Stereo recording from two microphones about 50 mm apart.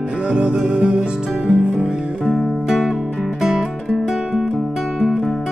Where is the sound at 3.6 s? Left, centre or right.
Centre.